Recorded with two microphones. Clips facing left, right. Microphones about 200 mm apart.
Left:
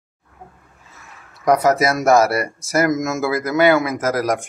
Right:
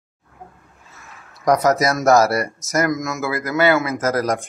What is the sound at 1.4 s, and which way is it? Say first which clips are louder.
Speech: left 1 dB; 5° left (ahead or behind).